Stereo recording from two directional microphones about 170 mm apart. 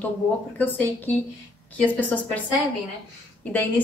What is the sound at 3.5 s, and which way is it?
Speech, 10° left (ahead or behind).